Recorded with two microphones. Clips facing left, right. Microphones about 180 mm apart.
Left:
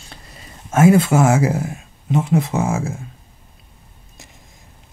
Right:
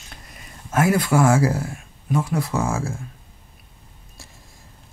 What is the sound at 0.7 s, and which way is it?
Speech, 25° left (ahead or behind).